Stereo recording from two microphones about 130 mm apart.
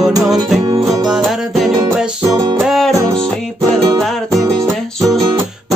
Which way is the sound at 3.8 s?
30° right (ahead or behind).